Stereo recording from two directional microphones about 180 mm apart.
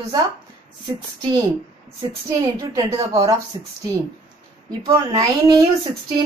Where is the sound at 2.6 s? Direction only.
20° right (ahead or behind).